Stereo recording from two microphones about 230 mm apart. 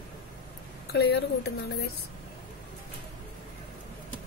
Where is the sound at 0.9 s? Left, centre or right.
Left.